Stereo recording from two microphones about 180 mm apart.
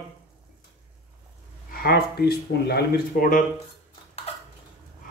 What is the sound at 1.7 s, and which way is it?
Speech, 60° left (ahead or behind).